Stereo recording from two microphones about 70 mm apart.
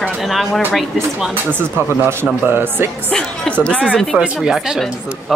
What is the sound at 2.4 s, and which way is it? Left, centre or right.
Speech, right.